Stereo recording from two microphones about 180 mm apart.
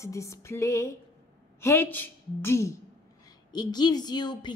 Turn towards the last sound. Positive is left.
turn(degrees=25)  # may be behind; listen again after turning